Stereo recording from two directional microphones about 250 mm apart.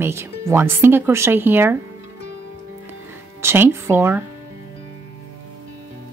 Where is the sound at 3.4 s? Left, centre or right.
Centre.